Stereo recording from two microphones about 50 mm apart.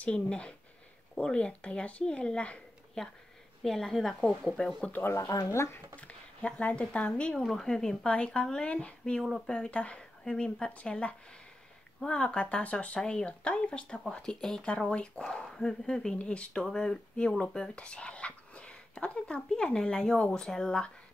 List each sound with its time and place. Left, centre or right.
0.0 s speech: left
5.5 s speech: left
5.9 s speech: left
8.1 s speech: left